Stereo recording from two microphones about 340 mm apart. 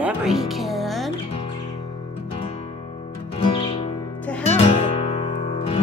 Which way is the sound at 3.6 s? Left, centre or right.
Centre.